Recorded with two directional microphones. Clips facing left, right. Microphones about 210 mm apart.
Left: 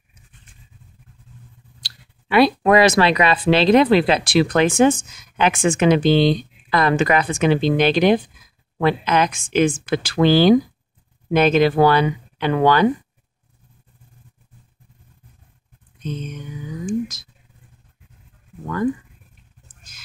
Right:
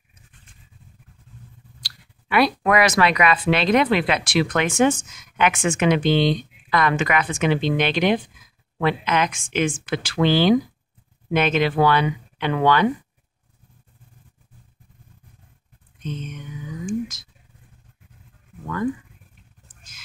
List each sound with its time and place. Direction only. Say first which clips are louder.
1.8 s speech: even; 25° left (ahead or behind)
16.0 s speech: left 3 dB; 35° left (ahead or behind)